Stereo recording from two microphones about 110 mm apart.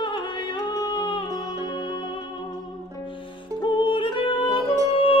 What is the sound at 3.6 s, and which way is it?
Music, 50° left (ahead or behind).